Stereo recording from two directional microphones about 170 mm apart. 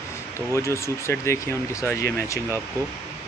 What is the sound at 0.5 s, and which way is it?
Speech, 15° left (ahead or behind).